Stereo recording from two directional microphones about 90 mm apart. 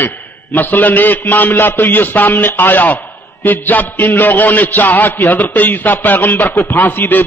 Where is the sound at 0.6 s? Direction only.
20° left (ahead or behind).